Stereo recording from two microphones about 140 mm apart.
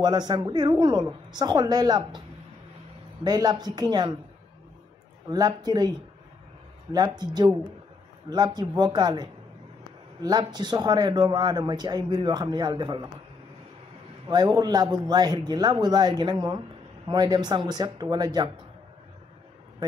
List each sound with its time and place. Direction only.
0.0 s speech: 30° right (ahead or behind)
3.3 s speech: 30° right (ahead or behind)
5.3 s speech: 30° right (ahead or behind)
14.3 s speech: 30° right (ahead or behind)